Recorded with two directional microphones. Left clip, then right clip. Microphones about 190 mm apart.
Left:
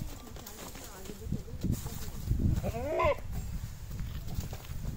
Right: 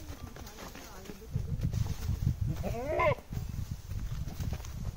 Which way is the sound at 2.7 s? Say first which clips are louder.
Even; centre (ahead or behind).